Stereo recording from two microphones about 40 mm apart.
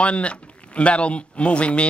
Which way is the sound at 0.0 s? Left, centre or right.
Left.